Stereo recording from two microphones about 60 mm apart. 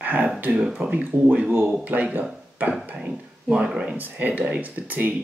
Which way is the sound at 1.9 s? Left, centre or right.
Right.